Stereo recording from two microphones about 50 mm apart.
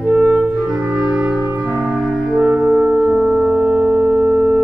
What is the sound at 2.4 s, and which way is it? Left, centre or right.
Music, centre.